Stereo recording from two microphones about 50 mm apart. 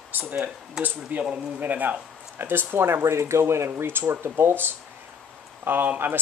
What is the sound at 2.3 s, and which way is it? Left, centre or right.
Speech, right.